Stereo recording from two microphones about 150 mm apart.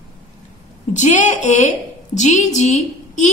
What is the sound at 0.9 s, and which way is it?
A woman's voice, 55° left (ahead or behind).